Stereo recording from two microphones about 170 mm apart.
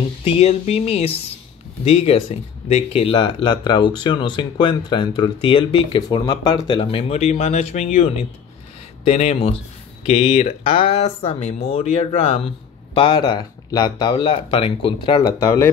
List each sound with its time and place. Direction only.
0.2 s speech: 35° left (ahead or behind); by 15.7 s 15° left (ahead or behind)